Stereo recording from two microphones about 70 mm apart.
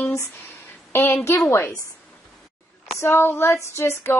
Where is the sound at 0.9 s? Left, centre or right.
Left.